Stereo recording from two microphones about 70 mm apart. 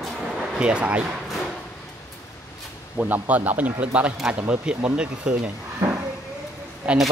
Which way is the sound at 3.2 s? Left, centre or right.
Right.